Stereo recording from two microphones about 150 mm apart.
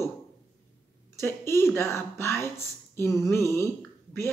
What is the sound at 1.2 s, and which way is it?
Speech, 15° left (ahead or behind).